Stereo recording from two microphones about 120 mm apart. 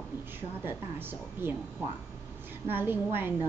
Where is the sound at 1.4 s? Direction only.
20° right (ahead or behind).